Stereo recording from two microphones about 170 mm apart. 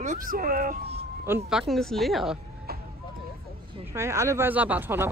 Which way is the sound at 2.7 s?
65° right (ahead or behind).